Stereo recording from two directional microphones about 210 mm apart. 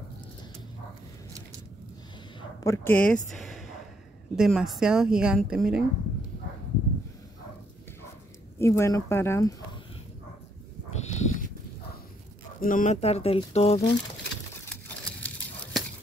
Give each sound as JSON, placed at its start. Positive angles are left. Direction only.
{"t": 2.6, "sound": "a woman's voice", "side_deg": 10}
{"t": 8.5, "sound": "speech", "side_deg": 10}
{"t": 11.1, "sound": "livestock", "side_deg": 30}
{"t": 12.5, "sound": "speech", "side_deg": 40}
{"t": 14.6, "sound": "a sound", "side_deg": 5}